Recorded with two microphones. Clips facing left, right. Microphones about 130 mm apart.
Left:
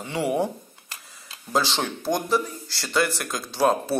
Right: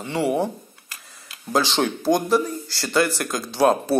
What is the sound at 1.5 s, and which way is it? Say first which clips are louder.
Speech: right 4 dB; centre (ahead or behind).